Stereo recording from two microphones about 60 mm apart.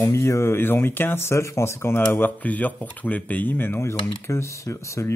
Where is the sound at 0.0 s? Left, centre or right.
Left.